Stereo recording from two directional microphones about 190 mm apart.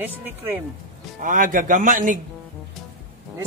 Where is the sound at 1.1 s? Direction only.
45° right (ahead or behind).